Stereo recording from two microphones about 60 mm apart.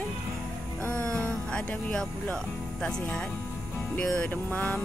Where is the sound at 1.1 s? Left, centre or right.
Centre.